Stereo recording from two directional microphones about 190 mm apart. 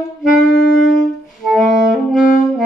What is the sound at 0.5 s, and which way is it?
Saxophone, 80° left.